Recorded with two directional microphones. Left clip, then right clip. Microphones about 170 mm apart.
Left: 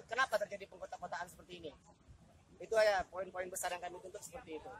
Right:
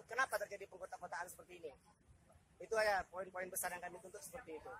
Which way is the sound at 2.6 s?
10° right (ahead or behind).